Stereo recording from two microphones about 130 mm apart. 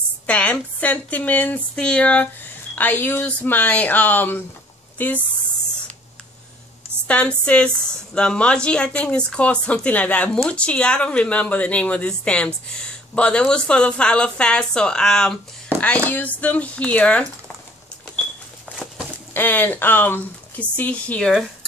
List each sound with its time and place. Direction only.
0.3 s a woman's voice: 10° left (ahead or behind)
7.1 s a woman's voice: 10° left (ahead or behind)
19.3 s a woman's voice: 15° left (ahead or behind)